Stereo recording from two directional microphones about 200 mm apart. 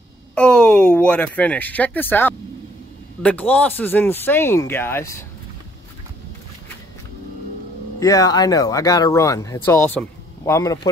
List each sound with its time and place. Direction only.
0.3 s speech: 5° left (ahead or behind)
8.0 s speech: 15° left (ahead or behind)